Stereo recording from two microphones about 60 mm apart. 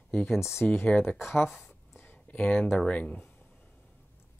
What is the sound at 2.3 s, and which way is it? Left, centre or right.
Speech, left.